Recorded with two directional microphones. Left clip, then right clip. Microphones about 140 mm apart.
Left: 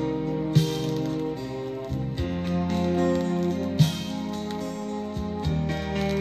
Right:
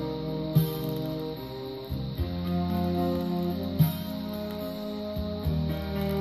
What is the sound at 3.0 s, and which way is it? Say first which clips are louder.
Music: left 6 dB; 35° left (ahead or behind).